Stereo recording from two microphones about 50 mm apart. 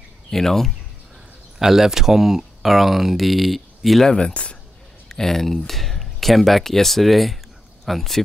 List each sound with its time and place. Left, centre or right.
0.3 s speech: centre
1.6 s speech: centre
4.1 s speech: centre
5.0 s speech: centre